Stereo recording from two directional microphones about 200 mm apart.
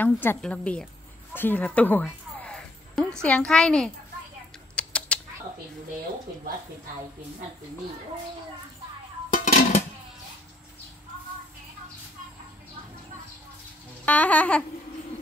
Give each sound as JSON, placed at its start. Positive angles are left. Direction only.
{"t": 0.0, "sound": "a woman's voice", "side_deg": 10}
{"t": 4.7, "sound": "a sound", "side_deg": 5}
{"t": 9.3, "sound": "music", "side_deg": 40}
{"t": 14.0, "sound": "a woman's voice", "side_deg": 5}